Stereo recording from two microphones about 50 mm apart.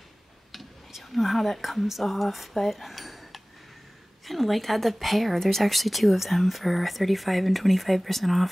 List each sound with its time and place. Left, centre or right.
0.5 s a woman's voice: centre